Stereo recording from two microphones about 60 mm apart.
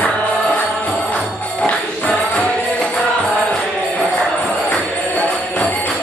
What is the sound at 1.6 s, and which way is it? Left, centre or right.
Music, centre.